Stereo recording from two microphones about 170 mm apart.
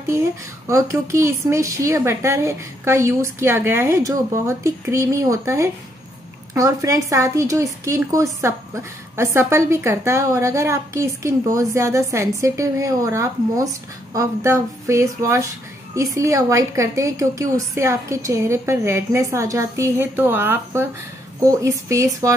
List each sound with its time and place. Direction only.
0.7 s a woman's voice: 20° right (ahead or behind)